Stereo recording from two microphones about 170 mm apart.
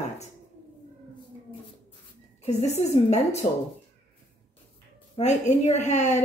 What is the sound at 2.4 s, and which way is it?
Speech, 40° left (ahead or behind).